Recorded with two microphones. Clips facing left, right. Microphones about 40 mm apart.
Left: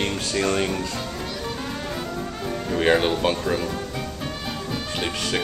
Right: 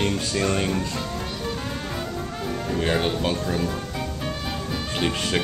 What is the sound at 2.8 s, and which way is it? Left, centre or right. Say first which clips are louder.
Speech: left 5 dB; left.